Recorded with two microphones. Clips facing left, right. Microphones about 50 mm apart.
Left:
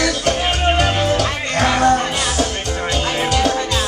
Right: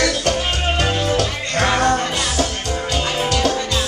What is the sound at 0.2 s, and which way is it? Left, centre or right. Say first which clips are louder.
Music: left 2 dB; centre.